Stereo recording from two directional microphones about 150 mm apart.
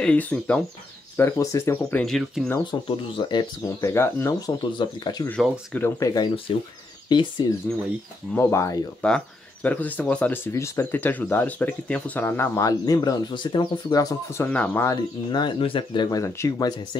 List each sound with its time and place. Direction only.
0.0 s speech: 10° left (ahead or behind)
1.1 s speech: 20° left (ahead or behind)
2.0 s speech: centre (ahead or behind)
2.7 s speech: 30° left (ahead or behind)
3.8 s speech: 15° left (ahead or behind)
4.7 s speech: 30° left (ahead or behind)
5.4 s speech: 5° left (ahead or behind)
5.9 s speech: 25° left (ahead or behind)
8.4 s speech: 20° left (ahead or behind)
9.0 s speech: 10° left (ahead or behind)
14.9 s speech: 30° left (ahead or behind)